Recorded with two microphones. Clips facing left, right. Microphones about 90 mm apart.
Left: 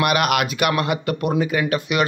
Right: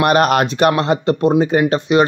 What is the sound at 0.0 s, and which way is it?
Speech, 35° right (ahead or behind).